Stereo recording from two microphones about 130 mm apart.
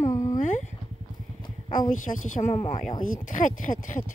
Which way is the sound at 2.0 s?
90° left.